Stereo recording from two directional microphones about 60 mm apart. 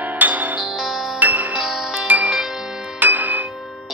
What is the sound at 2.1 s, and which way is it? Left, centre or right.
Music, right.